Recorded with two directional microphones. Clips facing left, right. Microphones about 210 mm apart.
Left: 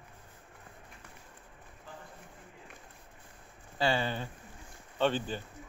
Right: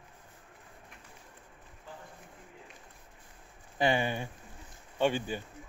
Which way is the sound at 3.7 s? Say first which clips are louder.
Right 2 dB; 15° right (ahead or behind).